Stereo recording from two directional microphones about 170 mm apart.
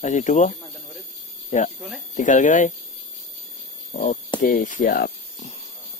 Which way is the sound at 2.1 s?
45° left (ahead or behind).